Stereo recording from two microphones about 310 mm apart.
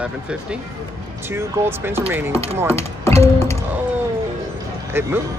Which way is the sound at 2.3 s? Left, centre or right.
Centre.